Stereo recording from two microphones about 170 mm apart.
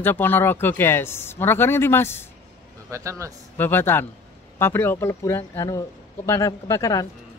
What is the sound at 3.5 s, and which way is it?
Speech, 10° left (ahead or behind).